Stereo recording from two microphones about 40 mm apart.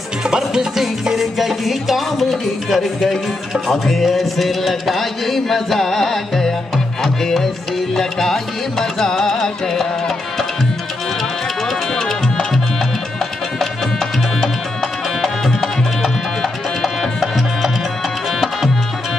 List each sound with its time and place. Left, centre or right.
0.4 s music: centre
11.9 s music: centre
15.2 s music: centre
17.2 s music: centre